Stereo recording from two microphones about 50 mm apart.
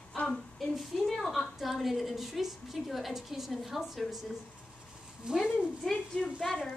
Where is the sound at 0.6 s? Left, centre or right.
Centre.